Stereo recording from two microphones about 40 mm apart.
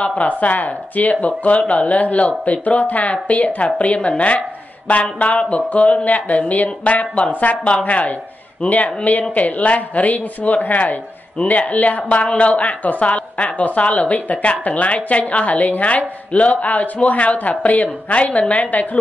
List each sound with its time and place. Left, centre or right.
0.0 s a man's voice: left